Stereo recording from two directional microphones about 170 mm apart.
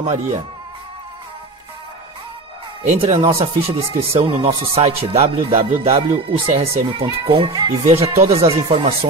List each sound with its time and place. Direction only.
2.8 s speech: 40° right (ahead or behind)